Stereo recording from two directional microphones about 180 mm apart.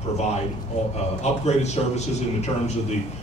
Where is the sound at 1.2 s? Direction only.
40° left (ahead or behind).